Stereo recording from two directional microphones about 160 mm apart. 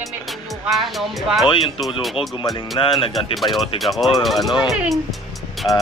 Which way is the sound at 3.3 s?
Centre (ahead or behind).